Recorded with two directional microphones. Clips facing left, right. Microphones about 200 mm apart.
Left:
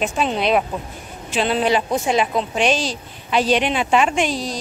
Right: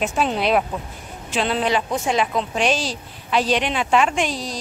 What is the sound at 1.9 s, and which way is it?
Speech, 10° left (ahead or behind).